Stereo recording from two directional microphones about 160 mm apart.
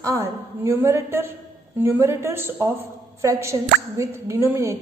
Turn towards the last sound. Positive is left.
turn(degrees=-15)  # may be behind; listen again after turning